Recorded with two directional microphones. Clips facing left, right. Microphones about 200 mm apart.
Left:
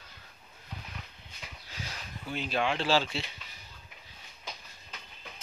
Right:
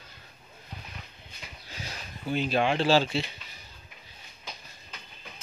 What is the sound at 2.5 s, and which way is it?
Speech, 30° right (ahead or behind).